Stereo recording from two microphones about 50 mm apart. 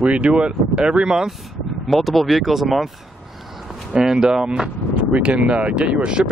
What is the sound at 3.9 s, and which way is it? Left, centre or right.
Speech, centre.